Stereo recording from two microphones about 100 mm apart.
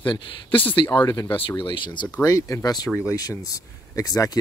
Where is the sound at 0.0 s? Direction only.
55° left (ahead or behind).